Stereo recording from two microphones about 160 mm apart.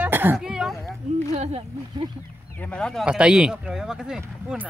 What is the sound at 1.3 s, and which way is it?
Speech, 40° right (ahead or behind).